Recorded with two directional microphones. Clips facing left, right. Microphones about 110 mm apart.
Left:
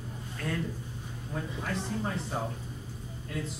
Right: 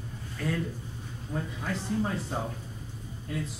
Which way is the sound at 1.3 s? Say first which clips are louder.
Right 1 dB; centre (ahead or behind).